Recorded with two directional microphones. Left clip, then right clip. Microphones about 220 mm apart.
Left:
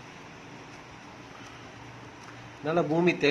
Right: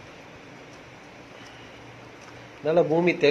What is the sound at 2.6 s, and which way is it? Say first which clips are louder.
Speech: right 5 dB; 5° left (ahead or behind).